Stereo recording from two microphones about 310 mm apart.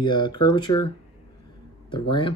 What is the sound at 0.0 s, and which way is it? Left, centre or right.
Speech, centre.